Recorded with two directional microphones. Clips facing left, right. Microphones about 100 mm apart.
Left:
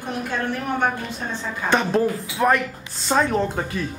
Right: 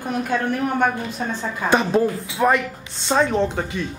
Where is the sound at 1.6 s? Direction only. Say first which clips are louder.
Right 2 dB; 5° right (ahead or behind).